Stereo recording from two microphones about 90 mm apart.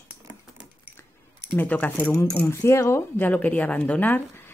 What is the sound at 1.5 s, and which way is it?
Speech, 20° left (ahead or behind).